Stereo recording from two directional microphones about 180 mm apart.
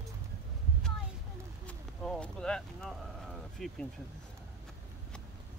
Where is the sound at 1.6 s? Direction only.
5° left (ahead or behind).